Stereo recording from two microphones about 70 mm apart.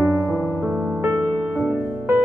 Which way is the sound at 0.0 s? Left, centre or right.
Right.